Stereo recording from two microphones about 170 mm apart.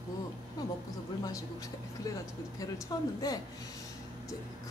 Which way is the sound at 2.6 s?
20° left (ahead or behind).